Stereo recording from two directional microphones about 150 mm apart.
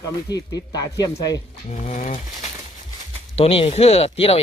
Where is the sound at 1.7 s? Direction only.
50° left (ahead or behind).